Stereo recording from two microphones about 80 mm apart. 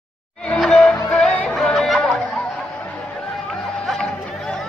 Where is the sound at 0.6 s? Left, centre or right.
Centre.